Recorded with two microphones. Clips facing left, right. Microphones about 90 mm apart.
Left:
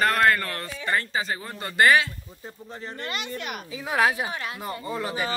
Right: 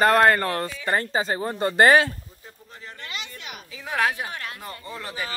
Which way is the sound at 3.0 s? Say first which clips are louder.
Left 5 dB; 55° left (ahead or behind).